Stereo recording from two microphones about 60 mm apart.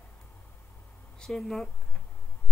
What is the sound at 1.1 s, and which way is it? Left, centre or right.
Speech, centre.